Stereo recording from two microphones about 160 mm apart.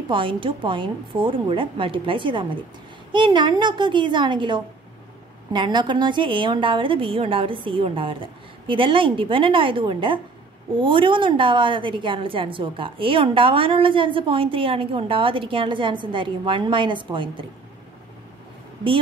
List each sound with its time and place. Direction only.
0.1 s a woman's voice: 35° right (ahead or behind)